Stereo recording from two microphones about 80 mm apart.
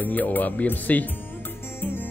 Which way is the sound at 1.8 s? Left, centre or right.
Left.